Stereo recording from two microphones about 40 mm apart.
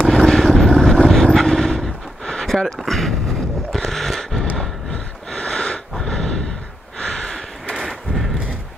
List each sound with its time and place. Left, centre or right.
0.0 s vehicle: centre
2.9 s artillery fire: centre
3.7 s horse: centre
4.6 s snort: centre
7.0 s a sound: centre
7.7 s a sound: centre